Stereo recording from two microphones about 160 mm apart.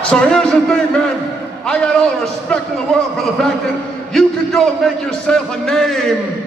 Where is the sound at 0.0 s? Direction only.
5° left (ahead or behind).